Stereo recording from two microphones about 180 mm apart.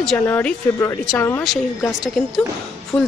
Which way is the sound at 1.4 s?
Centre (ahead or behind).